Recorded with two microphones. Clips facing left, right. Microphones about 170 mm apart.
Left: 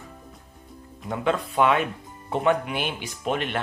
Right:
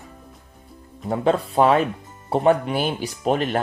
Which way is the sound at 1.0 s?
35° right (ahead or behind).